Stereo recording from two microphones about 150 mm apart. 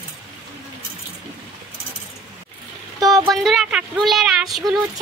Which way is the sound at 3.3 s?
Centre (ahead or behind).